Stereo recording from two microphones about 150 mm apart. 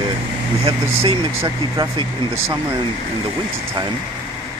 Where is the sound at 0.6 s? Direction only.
35° right (ahead or behind).